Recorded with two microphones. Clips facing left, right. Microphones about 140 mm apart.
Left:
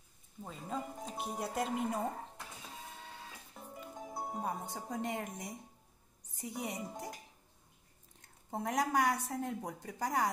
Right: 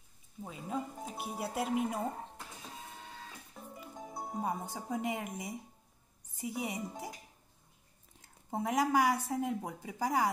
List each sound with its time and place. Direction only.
0.4 s speech: 5° right (ahead or behind)
3.5 s music: centre (ahead or behind)
6.3 s speech: 5° right (ahead or behind)
8.2 s speech: 5° right (ahead or behind)